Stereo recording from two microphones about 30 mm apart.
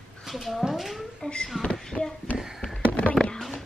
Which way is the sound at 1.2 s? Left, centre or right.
Left.